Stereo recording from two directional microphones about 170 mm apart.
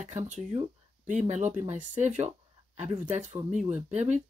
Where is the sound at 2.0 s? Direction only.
45° right (ahead or behind).